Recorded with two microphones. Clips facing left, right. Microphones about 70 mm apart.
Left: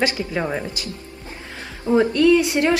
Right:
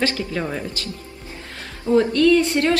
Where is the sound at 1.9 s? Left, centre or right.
Centre.